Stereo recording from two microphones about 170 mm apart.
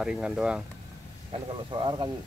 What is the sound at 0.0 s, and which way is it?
Speech, 5° right (ahead or behind).